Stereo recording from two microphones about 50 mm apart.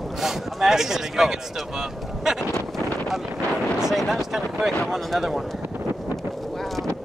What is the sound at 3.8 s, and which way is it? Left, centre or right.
Speech, centre.